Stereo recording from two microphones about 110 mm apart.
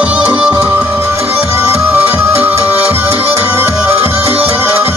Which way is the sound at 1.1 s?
65° right (ahead or behind).